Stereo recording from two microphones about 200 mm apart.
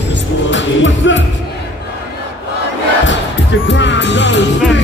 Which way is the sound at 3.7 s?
65° left (ahead or behind).